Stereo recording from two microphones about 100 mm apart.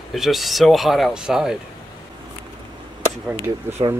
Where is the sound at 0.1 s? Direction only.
Centre (ahead or behind).